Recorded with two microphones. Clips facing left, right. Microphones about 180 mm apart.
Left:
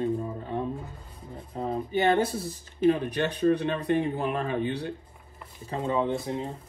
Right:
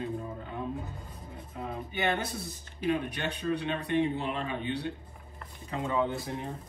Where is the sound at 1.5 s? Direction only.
35° left (ahead or behind).